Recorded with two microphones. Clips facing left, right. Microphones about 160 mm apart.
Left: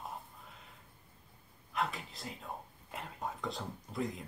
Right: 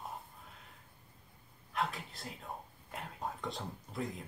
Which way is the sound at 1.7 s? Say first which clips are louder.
Even; centre (ahead or behind).